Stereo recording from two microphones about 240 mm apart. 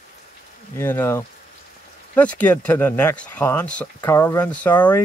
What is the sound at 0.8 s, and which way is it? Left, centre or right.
Speech, centre.